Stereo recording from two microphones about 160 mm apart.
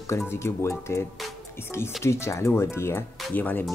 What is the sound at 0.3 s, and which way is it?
Speech, 15° left (ahead or behind).